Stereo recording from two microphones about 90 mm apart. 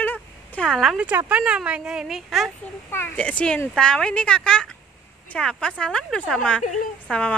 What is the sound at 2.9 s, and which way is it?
Speech, 25° left (ahead or behind).